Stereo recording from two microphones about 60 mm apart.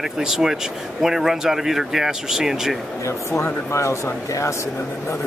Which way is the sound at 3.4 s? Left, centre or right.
Left.